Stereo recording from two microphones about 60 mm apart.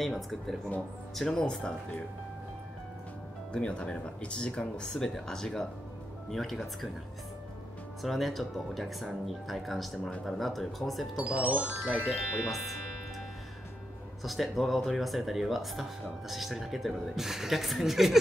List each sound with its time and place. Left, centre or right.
0.0 s speech: centre
1.3 s speech: centre
3.5 s speech: centre
8.0 s speech: centre
11.1 s speech: right
11.7 s speech: right
12.4 s speech: centre
14.2 s speech: centre